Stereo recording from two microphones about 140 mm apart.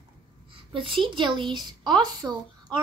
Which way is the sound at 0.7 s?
35° right (ahead or behind).